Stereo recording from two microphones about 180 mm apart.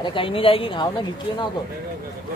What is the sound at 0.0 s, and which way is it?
A woman's voice, 30° left (ahead or behind).